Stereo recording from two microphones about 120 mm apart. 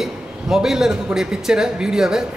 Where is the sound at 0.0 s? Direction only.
5° right (ahead or behind).